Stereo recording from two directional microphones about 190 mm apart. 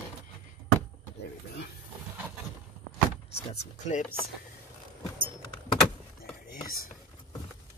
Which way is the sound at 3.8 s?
40° left (ahead or behind).